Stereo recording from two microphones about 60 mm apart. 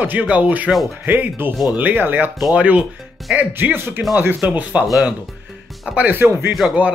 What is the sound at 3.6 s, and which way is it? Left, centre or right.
Speech, right.